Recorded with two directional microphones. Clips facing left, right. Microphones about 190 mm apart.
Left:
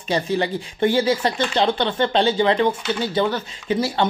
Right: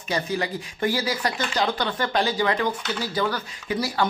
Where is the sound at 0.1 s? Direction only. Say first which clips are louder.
Left 5 dB; 30° left (ahead or behind).